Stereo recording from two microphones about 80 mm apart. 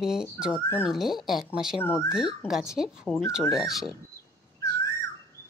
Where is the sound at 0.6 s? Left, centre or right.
Left.